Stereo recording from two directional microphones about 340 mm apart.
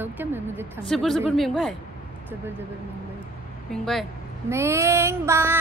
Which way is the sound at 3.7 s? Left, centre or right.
Centre.